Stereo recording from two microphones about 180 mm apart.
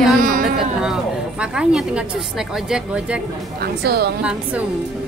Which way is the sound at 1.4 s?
5° right (ahead or behind).